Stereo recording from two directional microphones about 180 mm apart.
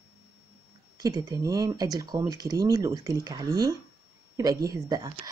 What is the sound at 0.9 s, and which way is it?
Speech, 20° right (ahead or behind).